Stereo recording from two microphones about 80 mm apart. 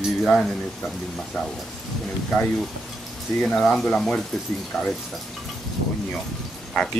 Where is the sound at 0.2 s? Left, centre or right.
Centre.